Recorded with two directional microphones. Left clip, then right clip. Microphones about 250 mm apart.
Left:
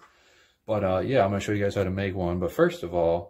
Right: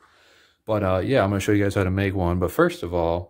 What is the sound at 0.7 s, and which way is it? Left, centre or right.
Speech, right.